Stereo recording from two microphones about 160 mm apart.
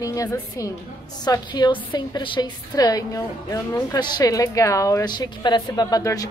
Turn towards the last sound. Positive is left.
turn(degrees=20)  # may be behind; listen again after turning